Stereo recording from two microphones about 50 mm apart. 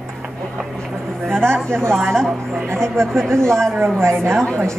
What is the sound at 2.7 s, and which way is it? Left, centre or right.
Speech, right.